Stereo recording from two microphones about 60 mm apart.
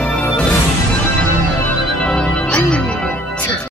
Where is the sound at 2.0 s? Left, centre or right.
Centre.